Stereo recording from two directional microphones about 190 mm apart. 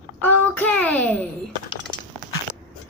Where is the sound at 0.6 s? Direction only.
10° left (ahead or behind).